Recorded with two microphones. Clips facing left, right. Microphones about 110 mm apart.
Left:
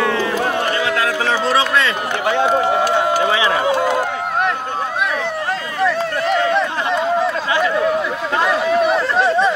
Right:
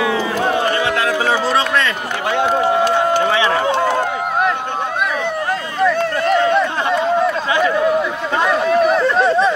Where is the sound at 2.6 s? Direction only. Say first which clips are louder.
Right 1 dB; 25° right (ahead or behind).